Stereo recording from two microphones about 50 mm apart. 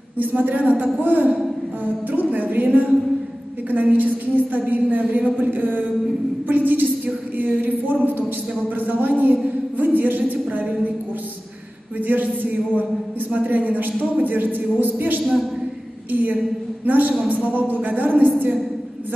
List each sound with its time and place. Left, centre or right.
0.2 s a woman's voice: right
13.3 s a woman's voice: right